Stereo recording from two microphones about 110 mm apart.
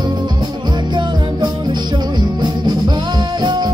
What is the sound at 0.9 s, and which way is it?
Music, 40° right (ahead or behind).